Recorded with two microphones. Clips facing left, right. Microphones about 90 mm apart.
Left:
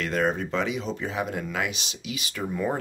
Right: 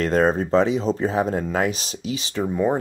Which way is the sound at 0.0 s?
35° right (ahead or behind).